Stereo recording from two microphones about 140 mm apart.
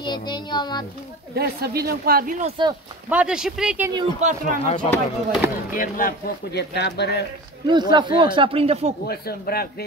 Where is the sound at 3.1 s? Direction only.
5° right (ahead or behind).